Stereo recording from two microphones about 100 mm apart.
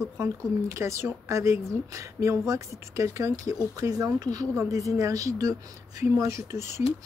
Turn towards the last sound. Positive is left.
turn(degrees=-30)  # may be behind; listen again after turning